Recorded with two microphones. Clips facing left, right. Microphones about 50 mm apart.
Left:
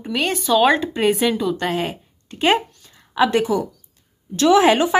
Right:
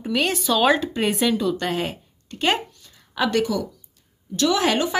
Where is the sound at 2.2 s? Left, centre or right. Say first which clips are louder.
Left 5 dB; centre.